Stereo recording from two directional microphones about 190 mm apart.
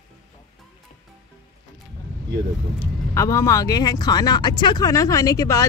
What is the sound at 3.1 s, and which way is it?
Speech, 15° left (ahead or behind).